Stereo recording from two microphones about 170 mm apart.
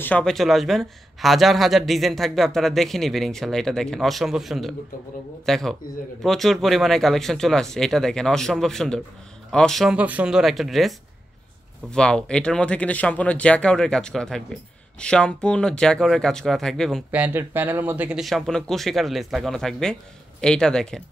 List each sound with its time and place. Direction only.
0.0 s speech: 5° left (ahead or behind)
17.1 s speech: 10° right (ahead or behind)